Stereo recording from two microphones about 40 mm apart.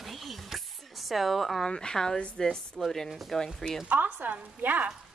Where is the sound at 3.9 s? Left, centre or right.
Right.